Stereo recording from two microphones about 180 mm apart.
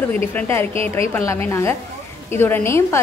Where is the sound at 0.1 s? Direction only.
10° left (ahead or behind).